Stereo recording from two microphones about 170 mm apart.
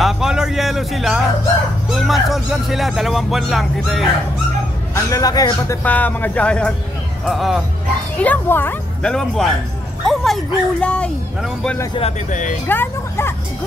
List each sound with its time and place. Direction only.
0.0 s music: 5° right (ahead or behind)
2.0 s speech: centre (ahead or behind)
4.9 s speech: 20° left (ahead or behind)
5.9 s speech: 10° left (ahead or behind)
8.2 s speech: 10° left (ahead or behind)
12.0 s speech: 45° left (ahead or behind)
12.6 s speech: 10° left (ahead or behind)